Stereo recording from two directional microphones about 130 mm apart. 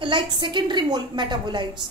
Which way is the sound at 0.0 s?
40° right (ahead or behind).